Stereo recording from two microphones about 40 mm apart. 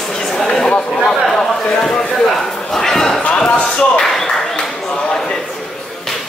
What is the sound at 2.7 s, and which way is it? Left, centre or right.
Speech, centre.